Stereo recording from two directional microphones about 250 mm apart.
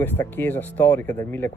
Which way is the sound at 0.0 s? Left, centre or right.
Centre.